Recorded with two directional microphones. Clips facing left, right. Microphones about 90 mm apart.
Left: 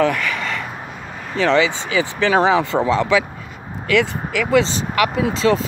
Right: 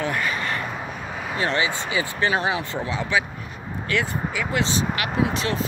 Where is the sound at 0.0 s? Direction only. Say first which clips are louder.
Left 6 dB; 90° left.